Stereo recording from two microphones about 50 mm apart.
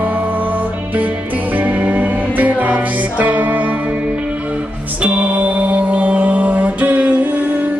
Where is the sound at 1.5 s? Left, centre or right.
Right.